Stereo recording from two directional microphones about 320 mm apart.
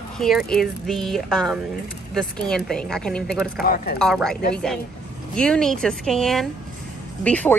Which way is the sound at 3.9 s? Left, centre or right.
Centre.